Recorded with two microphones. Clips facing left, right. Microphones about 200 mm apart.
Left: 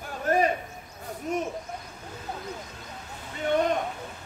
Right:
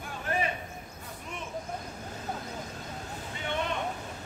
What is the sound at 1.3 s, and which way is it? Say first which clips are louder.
Vehicle: left 13 dB; 40° left (ahead or behind).